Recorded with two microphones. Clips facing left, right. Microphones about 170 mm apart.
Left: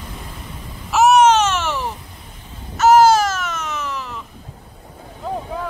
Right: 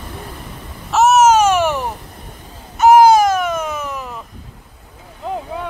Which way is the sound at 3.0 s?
15° right (ahead or behind).